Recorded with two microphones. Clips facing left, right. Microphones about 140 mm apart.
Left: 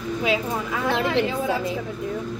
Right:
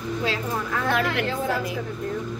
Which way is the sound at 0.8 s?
20° left (ahead or behind).